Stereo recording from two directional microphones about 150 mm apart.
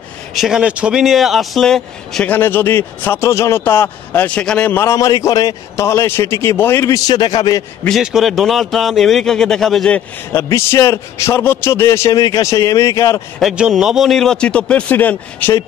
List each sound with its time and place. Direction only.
0.3 s speech: centre (ahead or behind); by 7.6 s 25° left (ahead or behind)
8.0 s speech: centre (ahead or behind)
10.3 s a man's voice: 15° left (ahead or behind)
13.4 s speech: 5° right (ahead or behind); by 15.6 s 10° left (ahead or behind)